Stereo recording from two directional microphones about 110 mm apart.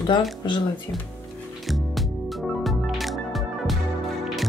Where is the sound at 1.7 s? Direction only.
Centre (ahead or behind).